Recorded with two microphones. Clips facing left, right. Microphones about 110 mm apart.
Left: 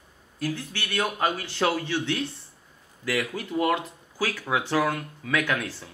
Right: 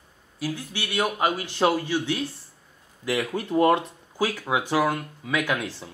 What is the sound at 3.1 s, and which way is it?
Speech, 30° right (ahead or behind).